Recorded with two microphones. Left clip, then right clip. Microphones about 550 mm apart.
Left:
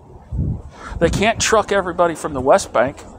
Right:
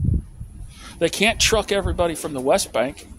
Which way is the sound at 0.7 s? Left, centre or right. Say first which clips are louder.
Left 4 dB; right.